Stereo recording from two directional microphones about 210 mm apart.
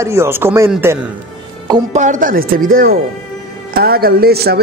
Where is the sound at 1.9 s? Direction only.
35° right (ahead or behind).